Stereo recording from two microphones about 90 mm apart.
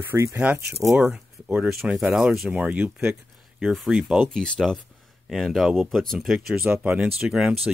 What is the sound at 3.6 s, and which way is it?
Speech, centre (ahead or behind).